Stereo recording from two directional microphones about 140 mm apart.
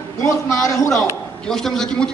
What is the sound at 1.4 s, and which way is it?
Speech, 5° left (ahead or behind).